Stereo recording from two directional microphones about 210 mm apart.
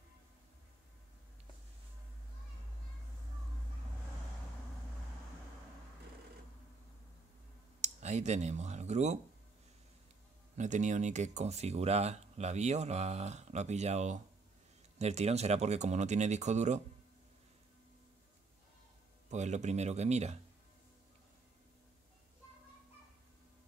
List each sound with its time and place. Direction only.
7.8 s speech: 35° right (ahead or behind)
10.6 s speech: 35° right (ahead or behind)
19.3 s speech: 35° right (ahead or behind)